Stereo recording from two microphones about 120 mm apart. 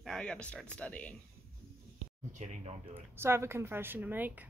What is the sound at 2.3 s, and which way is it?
Speech, 70° right (ahead or behind).